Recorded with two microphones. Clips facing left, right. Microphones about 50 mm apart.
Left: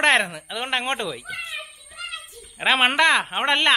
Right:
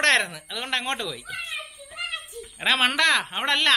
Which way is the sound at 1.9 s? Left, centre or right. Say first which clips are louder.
Right 3 dB; right.